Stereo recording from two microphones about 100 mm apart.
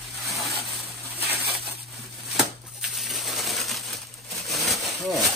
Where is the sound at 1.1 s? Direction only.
20° right (ahead or behind).